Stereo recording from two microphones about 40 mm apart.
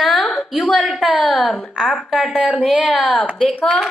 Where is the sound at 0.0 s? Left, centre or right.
Centre.